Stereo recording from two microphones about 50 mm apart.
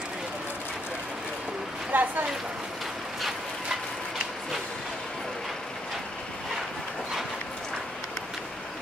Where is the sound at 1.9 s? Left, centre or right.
Right.